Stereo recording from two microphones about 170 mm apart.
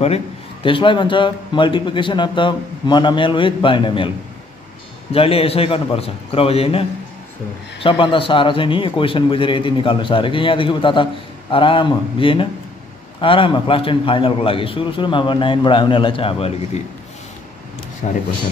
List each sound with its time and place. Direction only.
0.0 s a man's voice: 35° left (ahead or behind)
5.1 s a man's voice: 35° left (ahead or behind)
18.0 s speech: 45° left (ahead or behind)